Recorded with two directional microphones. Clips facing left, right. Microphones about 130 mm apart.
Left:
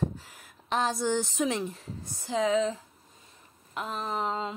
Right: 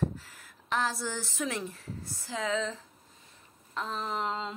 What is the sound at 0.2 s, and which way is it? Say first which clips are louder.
A woman's voice: left 2 dB; 20° left (ahead or behind).